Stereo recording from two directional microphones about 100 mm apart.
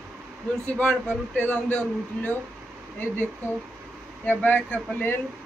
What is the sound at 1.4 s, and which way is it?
Speech, 10° left (ahead or behind).